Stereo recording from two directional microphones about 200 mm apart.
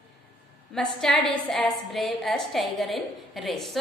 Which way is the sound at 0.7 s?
5° left (ahead or behind).